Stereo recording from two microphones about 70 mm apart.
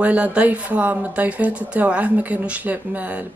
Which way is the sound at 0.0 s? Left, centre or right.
Centre.